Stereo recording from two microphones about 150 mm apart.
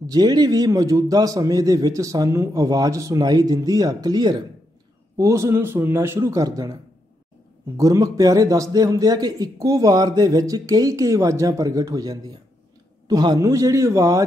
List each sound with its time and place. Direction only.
0.0 s a man's voice: 25° right (ahead or behind)